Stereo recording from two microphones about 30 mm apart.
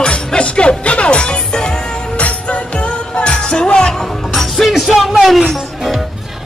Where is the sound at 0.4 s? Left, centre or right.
Left.